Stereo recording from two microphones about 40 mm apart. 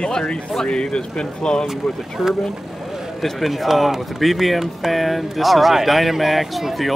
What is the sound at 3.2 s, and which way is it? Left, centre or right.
Speech, centre.